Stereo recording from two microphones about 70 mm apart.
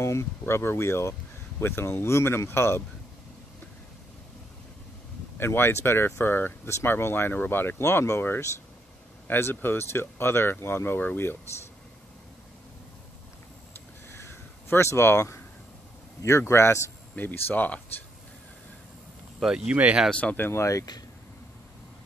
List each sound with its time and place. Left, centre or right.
0.0 s speech: left
5.4 s speech: left
13.7 s a sound: left
16.2 s a man's voice: left
17.1 s speech: left
19.4 s speech: centre
19.7 s speech: right
20.1 s speech: centre
20.3 s speech: left